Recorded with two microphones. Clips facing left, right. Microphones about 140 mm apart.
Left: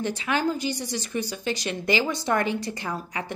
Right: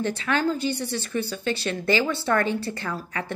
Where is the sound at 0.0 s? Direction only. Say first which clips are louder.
Right 1 dB; 15° left (ahead or behind).